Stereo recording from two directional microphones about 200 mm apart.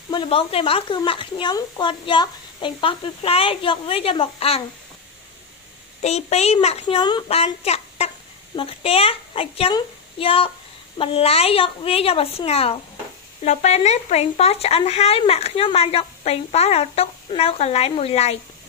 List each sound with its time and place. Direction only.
0.1 s speech: 25° left (ahead or behind)
6.0 s speech: 30° left (ahead or behind)